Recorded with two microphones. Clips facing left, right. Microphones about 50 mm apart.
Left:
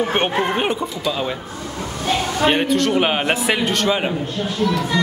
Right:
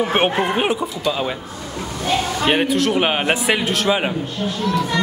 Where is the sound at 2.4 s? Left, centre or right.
Centre.